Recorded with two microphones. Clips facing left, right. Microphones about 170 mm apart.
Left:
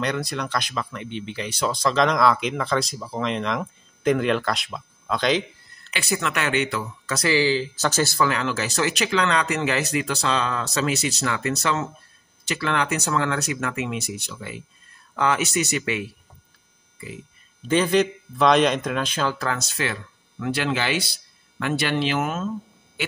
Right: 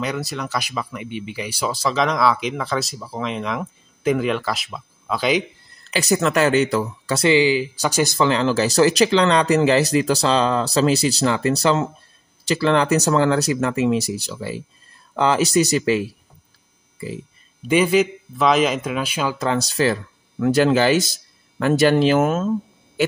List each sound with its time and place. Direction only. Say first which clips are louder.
0.0 s speech: right 1 dB; 5° right (ahead or behind)
5.9 s speech: right 7 dB; 40° right (ahead or behind)
17.6 s a man's voice: right 3 dB; 10° right (ahead or behind)
19.3 s speech: right 7 dB; 25° right (ahead or behind); by 22.5 s 45° right (ahead or behind)